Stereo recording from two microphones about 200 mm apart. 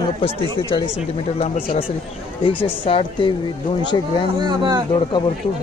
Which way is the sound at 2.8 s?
25° left (ahead or behind).